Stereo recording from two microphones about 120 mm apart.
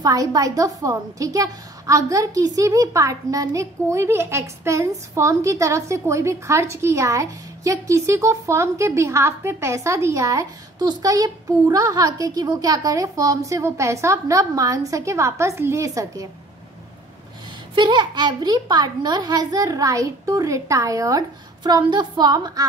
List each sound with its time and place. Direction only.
0.0 s a woman's voice: 30° right (ahead or behind)
17.7 s a child's voice: 40° right (ahead or behind)